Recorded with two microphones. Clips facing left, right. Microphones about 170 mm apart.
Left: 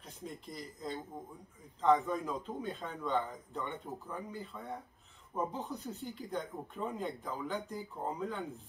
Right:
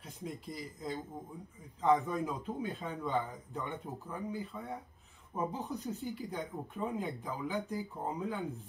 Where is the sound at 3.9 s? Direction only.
15° right (ahead or behind).